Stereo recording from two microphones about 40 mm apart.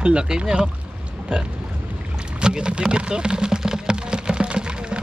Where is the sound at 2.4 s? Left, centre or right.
Right.